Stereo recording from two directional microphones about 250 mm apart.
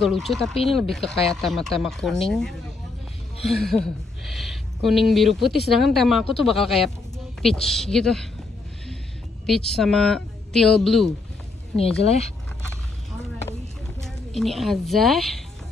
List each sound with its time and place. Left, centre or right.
0.0 s speech: centre
9.5 s speech: centre
12.0 s speech: left
14.0 s a woman's voice: centre